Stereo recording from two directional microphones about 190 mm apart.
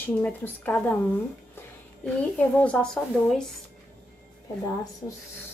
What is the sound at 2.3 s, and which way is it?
A woman's voice, 5° left (ahead or behind).